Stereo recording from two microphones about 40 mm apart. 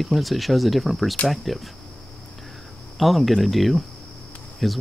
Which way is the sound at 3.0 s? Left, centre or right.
Centre.